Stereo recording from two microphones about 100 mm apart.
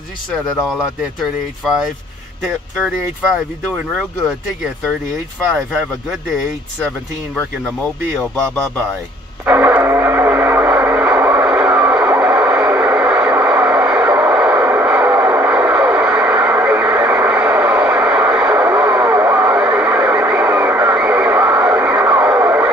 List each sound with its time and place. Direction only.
2.8 s speech: 5° right (ahead or behind)
9.5 s music: 20° right (ahead or behind)